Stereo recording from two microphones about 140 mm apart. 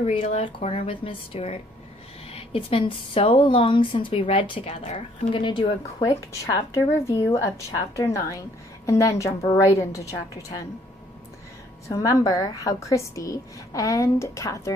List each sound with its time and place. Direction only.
0.1 s a woman's voice: 45° left (ahead or behind); by 10.4 s 20° left (ahead or behind)
11.9 s a woman's voice: 25° left (ahead or behind)